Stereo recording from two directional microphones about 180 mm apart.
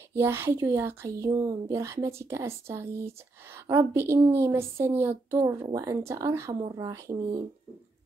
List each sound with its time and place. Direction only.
0.1 s speech: 15° right (ahead or behind)